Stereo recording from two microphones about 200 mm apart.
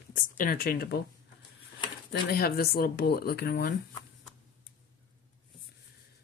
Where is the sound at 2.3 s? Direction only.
50° left (ahead or behind).